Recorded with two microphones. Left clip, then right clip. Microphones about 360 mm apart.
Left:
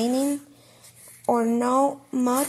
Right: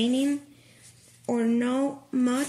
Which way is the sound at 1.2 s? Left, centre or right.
Left.